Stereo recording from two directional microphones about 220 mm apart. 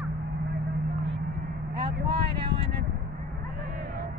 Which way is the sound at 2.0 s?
25° right (ahead or behind).